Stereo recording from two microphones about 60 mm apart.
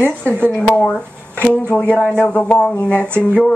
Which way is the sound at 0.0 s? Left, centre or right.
Left.